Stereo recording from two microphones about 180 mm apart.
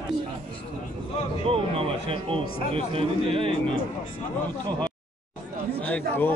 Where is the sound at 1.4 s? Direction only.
30° right (ahead or behind).